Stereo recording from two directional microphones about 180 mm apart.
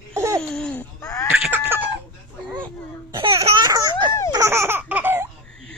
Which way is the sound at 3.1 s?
25° right (ahead or behind).